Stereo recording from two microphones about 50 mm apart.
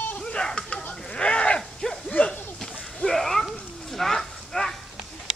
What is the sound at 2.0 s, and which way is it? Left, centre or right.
Dog, left.